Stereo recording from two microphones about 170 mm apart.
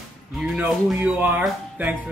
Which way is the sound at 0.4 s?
5° right (ahead or behind).